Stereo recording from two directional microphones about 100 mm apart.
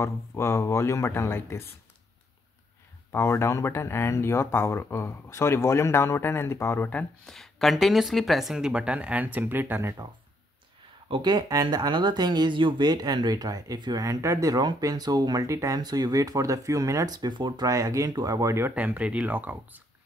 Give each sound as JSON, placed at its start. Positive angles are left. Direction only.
{"t": 0.0, "sound": "speech", "side_deg": 25}
{"t": 3.1, "sound": "speech", "side_deg": 25}
{"t": 6.9, "sound": "speech", "side_deg": 15}
{"t": 7.3, "sound": "speech", "side_deg": 0}
{"t": 11.1, "sound": "speech", "side_deg": -50}
{"t": 14.0, "sound": "speech", "side_deg": -30}
{"t": 18.8, "sound": "speech", "side_deg": -15}